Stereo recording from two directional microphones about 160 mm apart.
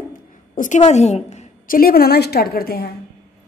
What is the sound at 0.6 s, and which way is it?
Speech, 50° left (ahead or behind).